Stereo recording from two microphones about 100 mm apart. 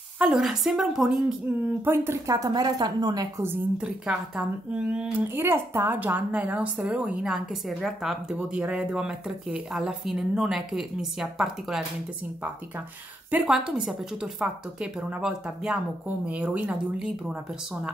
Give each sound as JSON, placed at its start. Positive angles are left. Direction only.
{"t": 0.2, "sound": "speech", "side_deg": -5}
{"t": 1.7, "sound": "speech", "side_deg": -20}
{"t": 2.2, "sound": "a woman's voice", "side_deg": -40}
{"t": 3.7, "sound": "a woman's voice", "side_deg": -10}
{"t": 5.3, "sound": "a woman's voice", "side_deg": -25}
{"t": 13.3, "sound": "a woman's voice", "side_deg": -5}